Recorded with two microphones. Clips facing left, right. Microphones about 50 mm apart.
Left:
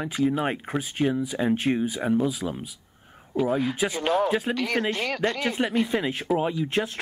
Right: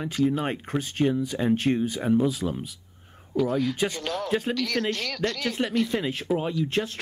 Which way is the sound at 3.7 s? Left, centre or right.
Centre.